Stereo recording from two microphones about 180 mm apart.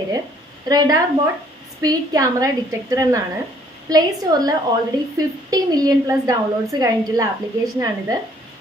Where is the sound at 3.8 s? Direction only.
20° right (ahead or behind).